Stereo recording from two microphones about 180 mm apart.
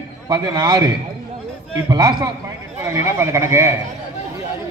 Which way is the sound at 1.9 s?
20° right (ahead or behind).